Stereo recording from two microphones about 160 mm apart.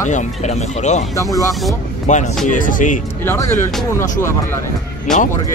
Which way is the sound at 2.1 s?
50° left (ahead or behind).